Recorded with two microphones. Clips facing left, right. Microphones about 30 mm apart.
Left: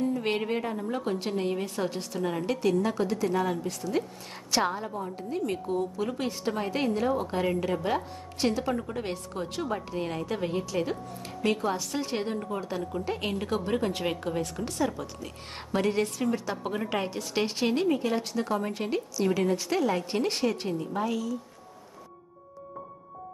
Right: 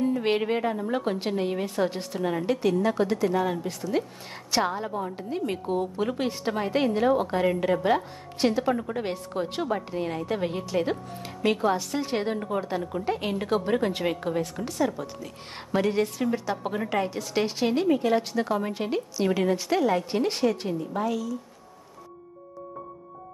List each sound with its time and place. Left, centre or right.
0.2 s a woman's voice: centre
1.3 s a woman's voice: centre
4.9 s a woman's voice: right
6.6 s a woman's voice: centre
6.9 s a woman's voice: right
7.2 s a woman's voice: centre
10.2 s a woman's voice: centre
12.3 s a woman's voice: right
13.1 s a woman's voice: centre
13.4 s a woman's voice: centre
19.1 s a woman's voice: centre